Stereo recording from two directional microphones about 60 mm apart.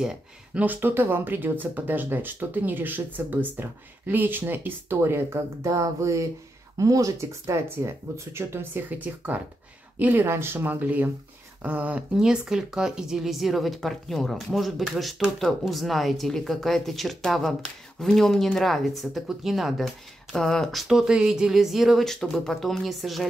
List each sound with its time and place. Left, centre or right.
0.7 s speech: right
5.7 s speech: right
8.8 s speech: right
10.2 s speech: right
10.6 s speech: right
12.2 s speech: centre